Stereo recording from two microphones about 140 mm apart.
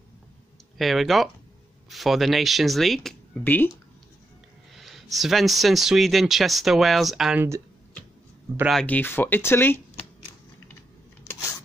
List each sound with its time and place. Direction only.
0.7 s speech: centre (ahead or behind)
3.4 s speech: 15° left (ahead or behind)
4.7 s speech: centre (ahead or behind)
8.8 s speech: 15° left (ahead or behind)
11.3 s a sound: 25° left (ahead or behind)